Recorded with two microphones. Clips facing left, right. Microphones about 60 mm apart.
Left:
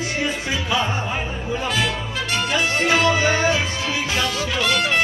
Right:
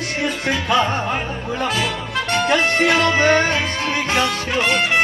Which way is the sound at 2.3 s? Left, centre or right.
Right.